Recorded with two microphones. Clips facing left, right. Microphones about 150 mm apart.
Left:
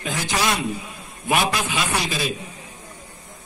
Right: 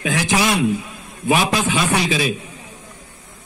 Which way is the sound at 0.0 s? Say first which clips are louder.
Right 6 dB; 90° right.